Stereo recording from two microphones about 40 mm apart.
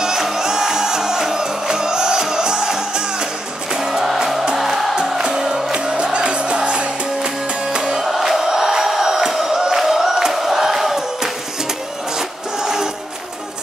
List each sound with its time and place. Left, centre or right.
0.0 s music: centre
12.2 s music: centre